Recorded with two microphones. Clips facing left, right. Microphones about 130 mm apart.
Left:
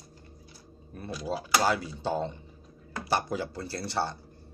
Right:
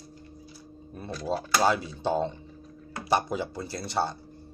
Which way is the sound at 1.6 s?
20° right (ahead or behind).